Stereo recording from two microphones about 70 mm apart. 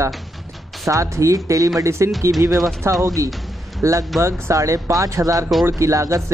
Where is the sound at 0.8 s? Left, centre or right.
Right.